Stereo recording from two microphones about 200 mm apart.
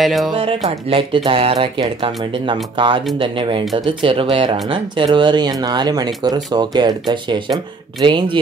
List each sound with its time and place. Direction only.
0.0 s speech: centre (ahead or behind)
0.3 s speech: 30° right (ahead or behind)